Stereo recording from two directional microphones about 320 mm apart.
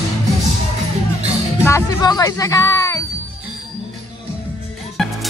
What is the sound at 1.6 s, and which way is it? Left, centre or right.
Speech, centre.